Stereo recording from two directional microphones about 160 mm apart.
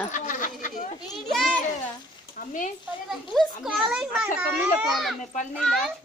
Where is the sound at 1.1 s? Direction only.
Centre (ahead or behind).